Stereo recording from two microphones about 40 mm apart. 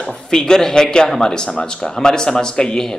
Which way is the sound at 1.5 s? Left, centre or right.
Left.